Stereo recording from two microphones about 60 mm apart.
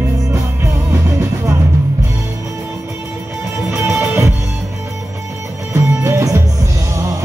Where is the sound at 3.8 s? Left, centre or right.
Right.